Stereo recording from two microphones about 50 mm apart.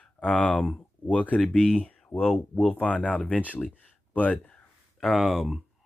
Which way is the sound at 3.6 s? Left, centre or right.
Left.